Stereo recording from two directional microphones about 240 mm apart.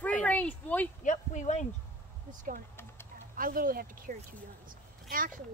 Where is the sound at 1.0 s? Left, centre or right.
Left.